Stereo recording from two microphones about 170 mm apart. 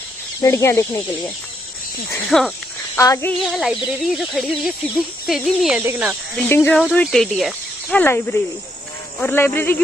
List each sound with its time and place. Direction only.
0.4 s speech: 15° left (ahead or behind)
2.3 s speech: 5° left (ahead or behind)
3.0 s speech: 15° left (ahead or behind)
3.4 s speech: centre (ahead or behind)
6.3 s speech: 10° left (ahead or behind)
8.0 s speech: 10° left (ahead or behind)